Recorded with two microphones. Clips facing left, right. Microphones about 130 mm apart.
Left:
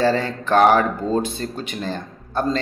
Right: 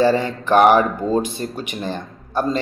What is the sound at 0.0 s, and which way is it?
Speech, 15° right (ahead or behind).